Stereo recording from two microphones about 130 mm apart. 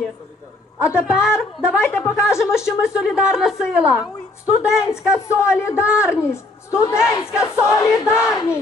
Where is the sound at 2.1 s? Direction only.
5° right (ahead or behind).